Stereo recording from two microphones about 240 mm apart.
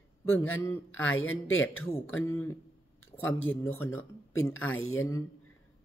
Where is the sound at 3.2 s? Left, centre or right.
Left.